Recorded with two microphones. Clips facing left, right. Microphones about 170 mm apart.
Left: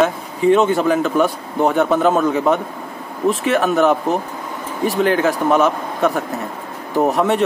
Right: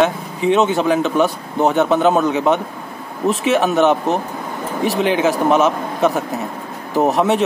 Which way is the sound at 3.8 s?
25° right (ahead or behind).